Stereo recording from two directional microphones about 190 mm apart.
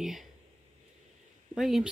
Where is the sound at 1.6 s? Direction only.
Centre (ahead or behind).